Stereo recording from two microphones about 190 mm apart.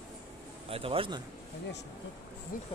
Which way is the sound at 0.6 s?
30° right (ahead or behind).